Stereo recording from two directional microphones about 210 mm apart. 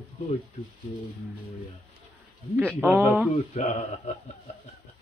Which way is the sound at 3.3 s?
35° left (ahead or behind).